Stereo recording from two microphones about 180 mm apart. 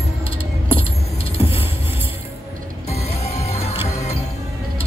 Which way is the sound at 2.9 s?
35° left (ahead or behind).